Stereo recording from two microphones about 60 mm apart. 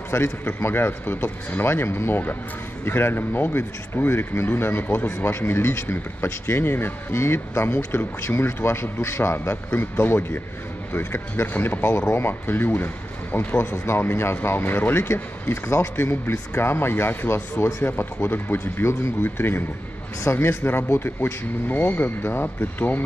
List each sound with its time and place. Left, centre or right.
0.1 s a man's voice: left